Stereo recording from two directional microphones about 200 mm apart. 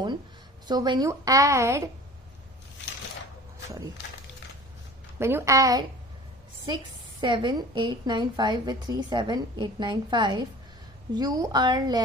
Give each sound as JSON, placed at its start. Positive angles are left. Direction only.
{"t": 0.7, "sound": "a woman's voice", "side_deg": -20}
{"t": 5.2, "sound": "a woman's voice", "side_deg": -15}